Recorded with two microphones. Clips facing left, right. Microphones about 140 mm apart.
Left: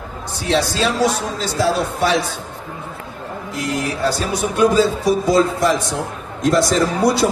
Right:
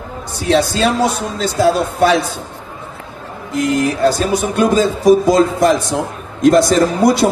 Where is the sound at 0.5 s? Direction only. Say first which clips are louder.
Right 4 dB; 55° right (ahead or behind).